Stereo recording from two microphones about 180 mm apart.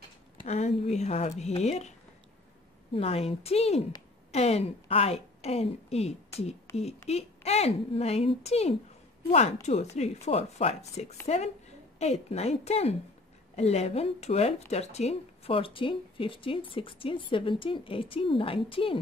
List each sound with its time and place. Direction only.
0.4 s speech: 40° left (ahead or behind)
2.9 s a woman's voice: 35° left (ahead or behind)